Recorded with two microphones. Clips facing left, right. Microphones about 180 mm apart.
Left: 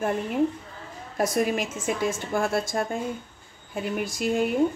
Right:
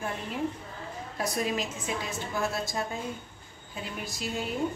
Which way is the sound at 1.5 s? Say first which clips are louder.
Left 5 dB; 50° left (ahead or behind).